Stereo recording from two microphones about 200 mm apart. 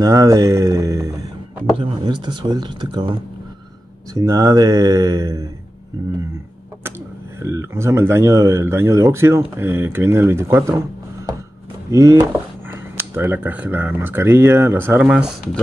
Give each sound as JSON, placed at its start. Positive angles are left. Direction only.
{"t": 0.0, "sound": "speech", "side_deg": -15}
{"t": 7.4, "sound": "speech", "side_deg": -15}
{"t": 11.9, "sound": "speech", "side_deg": -15}